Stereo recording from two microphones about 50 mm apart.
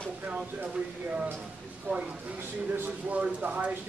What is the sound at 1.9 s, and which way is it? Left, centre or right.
Speech, right.